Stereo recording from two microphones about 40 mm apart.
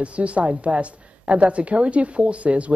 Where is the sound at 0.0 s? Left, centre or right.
Right.